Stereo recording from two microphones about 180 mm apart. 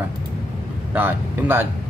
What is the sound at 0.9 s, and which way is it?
Speech, 10° right (ahead or behind).